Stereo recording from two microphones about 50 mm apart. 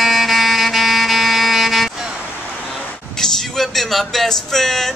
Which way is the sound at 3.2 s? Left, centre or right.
Centre.